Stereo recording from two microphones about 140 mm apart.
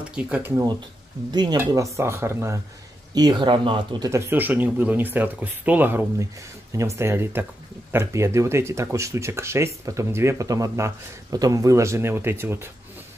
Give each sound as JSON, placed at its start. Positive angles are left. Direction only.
{"t": 0.1, "sound": "speech", "side_deg": -10}
{"t": 1.3, "sound": "speech", "side_deg": -30}
{"t": 3.2, "sound": "speech", "side_deg": -30}
{"t": 4.1, "sound": "speech", "side_deg": -15}